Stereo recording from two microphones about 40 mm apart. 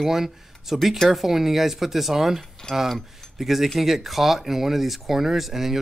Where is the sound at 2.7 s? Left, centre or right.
Left.